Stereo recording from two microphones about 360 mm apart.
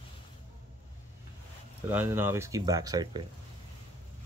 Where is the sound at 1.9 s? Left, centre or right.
Centre.